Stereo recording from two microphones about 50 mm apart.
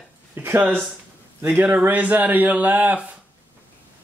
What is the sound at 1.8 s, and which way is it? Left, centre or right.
Speech, right.